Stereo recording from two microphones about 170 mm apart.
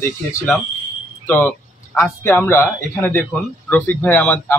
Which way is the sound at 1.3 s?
10° left (ahead or behind).